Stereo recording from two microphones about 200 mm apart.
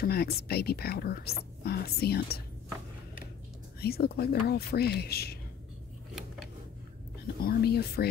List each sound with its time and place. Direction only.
0.0 s speech: 50° left (ahead or behind)
3.8 s speech: 50° left (ahead or behind)
7.3 s speech: 50° left (ahead or behind)